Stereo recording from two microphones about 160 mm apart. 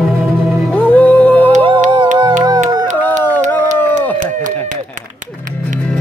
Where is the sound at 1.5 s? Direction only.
30° right (ahead or behind).